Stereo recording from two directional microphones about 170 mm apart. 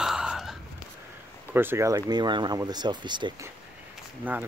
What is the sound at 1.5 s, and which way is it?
Speech, 15° right (ahead or behind).